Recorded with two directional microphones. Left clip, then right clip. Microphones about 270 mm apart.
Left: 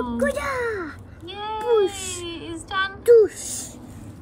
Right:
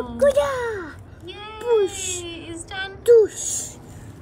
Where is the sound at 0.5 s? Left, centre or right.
Left.